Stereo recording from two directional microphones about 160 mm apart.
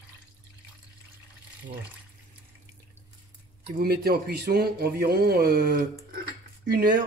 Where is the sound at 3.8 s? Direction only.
70° right (ahead or behind).